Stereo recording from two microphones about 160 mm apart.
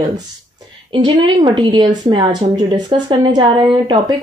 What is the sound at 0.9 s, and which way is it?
Speech, 30° right (ahead or behind).